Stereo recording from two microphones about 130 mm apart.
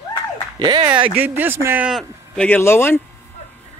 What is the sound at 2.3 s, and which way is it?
Speech, 15° left (ahead or behind).